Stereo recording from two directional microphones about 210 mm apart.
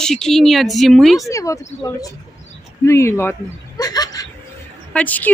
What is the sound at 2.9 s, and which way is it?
Speech, 15° left (ahead or behind).